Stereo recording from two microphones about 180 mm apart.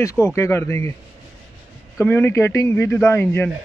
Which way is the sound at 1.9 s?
10° left (ahead or behind).